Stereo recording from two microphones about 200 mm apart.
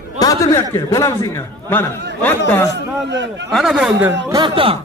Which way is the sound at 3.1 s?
60° right (ahead or behind).